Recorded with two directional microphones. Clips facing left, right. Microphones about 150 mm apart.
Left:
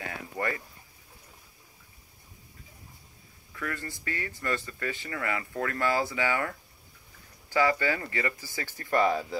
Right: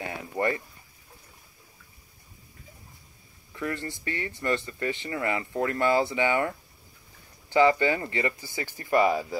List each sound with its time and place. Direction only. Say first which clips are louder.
0.0 s speech: right 5 dB; 25° right (ahead or behind)
3.5 s speech: right 4 dB; 25° right (ahead or behind); by 9.4 s 5° right (ahead or behind)